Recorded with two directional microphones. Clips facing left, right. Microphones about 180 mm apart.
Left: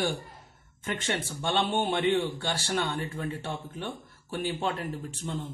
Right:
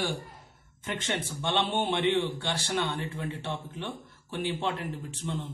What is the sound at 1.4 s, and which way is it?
A man's voice, 45° left (ahead or behind).